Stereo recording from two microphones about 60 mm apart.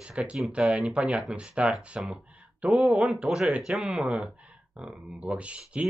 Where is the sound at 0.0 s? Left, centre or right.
Centre.